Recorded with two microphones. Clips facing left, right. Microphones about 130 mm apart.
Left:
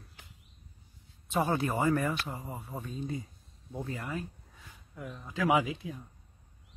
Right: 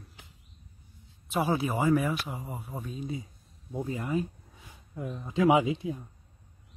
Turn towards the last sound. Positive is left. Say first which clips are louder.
# right 4 dB
turn(degrees=-25)  # may be behind; listen again after turning